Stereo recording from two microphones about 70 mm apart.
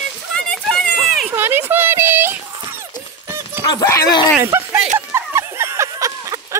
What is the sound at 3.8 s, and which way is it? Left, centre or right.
Speech, left.